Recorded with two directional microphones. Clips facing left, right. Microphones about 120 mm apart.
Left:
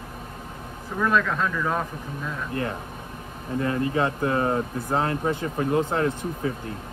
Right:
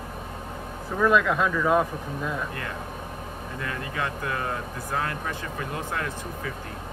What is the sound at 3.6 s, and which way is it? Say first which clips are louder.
Speech: left 8 dB; 30° left (ahead or behind).